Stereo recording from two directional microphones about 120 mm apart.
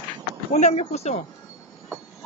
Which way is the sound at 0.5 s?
70° left (ahead or behind).